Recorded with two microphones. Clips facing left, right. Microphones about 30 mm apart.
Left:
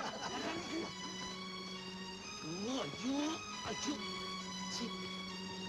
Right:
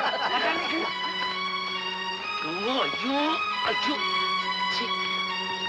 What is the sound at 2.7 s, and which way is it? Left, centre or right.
A man's voice, right.